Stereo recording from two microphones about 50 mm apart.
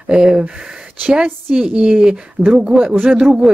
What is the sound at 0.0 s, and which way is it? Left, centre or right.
Speech, centre.